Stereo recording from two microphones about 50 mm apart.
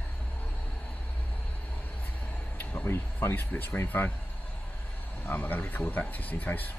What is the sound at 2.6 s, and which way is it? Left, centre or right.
Speech, left.